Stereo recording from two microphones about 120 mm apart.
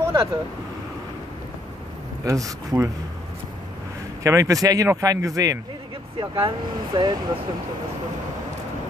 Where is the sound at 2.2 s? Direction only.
30° right (ahead or behind).